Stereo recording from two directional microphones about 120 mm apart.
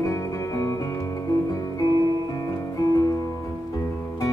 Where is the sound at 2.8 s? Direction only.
30° left (ahead or behind).